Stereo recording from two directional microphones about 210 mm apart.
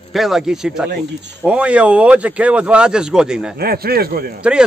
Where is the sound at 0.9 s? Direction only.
55° right (ahead or behind).